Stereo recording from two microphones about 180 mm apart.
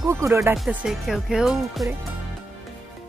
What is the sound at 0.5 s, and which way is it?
Speech, centre (ahead or behind).